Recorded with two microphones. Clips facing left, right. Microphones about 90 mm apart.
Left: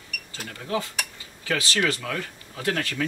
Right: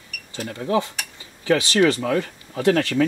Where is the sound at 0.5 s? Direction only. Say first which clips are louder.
Right 7 dB; 30° right (ahead or behind).